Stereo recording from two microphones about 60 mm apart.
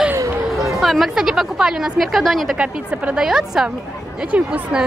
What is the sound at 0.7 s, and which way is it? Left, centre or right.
A woman's voice, centre.